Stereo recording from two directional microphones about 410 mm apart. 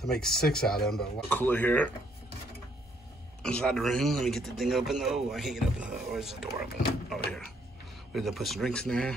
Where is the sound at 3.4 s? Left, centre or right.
Centre.